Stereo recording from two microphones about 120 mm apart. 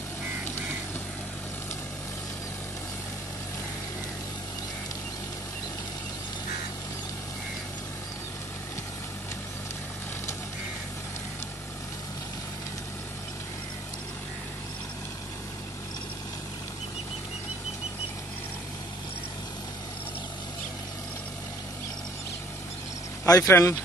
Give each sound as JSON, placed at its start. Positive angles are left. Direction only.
{"t": 23.2, "sound": "speech", "side_deg": 30}
{"t": 23.5, "sound": "speech", "side_deg": 20}